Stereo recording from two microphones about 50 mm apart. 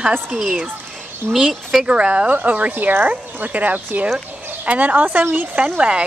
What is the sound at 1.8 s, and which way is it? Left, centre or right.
Speech, right.